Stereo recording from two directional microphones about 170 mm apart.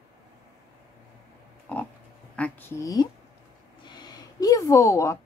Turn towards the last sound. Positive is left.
turn(degrees=15)  # may be behind; listen again after turning